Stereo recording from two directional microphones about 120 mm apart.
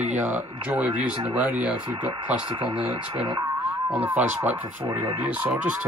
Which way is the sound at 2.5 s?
45° right (ahead or behind).